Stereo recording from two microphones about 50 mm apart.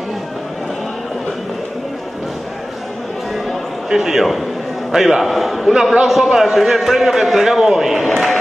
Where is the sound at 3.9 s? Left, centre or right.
Centre.